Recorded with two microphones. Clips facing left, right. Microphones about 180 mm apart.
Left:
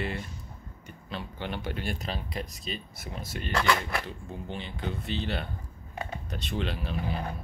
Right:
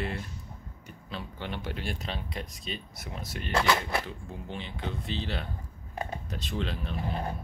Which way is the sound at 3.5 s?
20° right (ahead or behind).